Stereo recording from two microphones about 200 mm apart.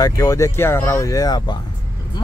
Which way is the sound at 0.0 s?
15° left (ahead or behind).